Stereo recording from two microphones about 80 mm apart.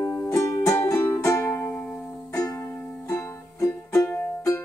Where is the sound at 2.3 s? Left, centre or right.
Left.